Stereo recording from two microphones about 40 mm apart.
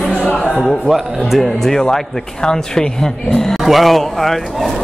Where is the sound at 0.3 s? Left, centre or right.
Centre.